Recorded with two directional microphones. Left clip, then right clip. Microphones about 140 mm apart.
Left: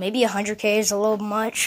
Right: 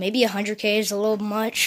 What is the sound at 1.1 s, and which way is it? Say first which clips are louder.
Speech: left 1 dB; 25° right (ahead or behind).